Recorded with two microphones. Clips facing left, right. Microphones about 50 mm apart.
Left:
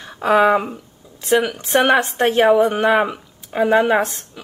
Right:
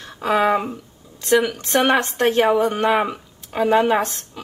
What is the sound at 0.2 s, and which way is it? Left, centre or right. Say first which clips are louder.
Speech: left 4 dB; centre.